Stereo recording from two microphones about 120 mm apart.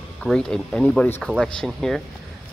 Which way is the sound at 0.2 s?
5° left (ahead or behind).